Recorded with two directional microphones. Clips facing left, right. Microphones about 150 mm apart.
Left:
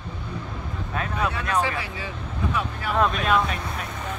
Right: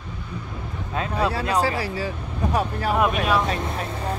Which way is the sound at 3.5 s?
30° right (ahead or behind).